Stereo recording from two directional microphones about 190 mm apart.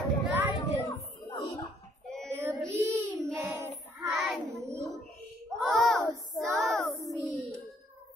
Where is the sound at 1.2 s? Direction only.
15° left (ahead or behind).